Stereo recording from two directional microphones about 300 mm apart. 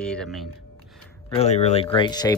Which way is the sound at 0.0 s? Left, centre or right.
Centre.